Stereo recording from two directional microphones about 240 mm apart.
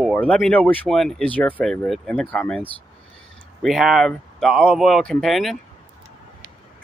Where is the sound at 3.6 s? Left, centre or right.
Centre.